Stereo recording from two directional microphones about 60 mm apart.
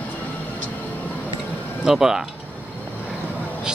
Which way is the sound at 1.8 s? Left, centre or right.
Centre.